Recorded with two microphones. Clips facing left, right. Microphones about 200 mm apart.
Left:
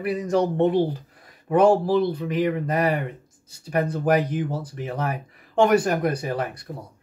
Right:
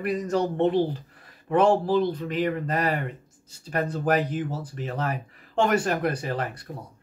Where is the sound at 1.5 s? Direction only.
10° left (ahead or behind).